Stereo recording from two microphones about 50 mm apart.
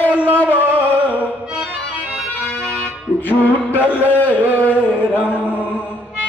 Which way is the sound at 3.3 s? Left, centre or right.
Left.